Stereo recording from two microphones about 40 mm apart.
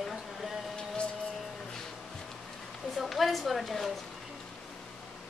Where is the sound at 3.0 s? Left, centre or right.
Centre.